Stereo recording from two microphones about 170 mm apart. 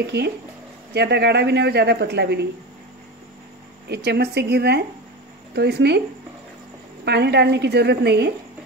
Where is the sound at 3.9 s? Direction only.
75° right (ahead or behind).